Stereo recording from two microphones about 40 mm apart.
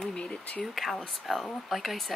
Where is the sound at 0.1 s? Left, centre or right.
Left.